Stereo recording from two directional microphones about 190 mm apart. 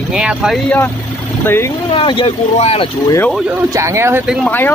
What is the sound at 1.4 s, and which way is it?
Speech, 10° left (ahead or behind).